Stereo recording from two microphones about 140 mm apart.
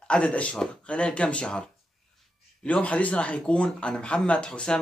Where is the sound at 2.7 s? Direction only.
10° left (ahead or behind).